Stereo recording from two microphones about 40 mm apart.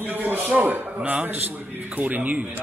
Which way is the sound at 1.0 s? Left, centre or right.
Right.